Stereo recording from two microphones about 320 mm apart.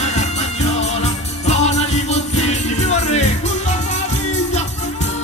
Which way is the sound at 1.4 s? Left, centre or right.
Left.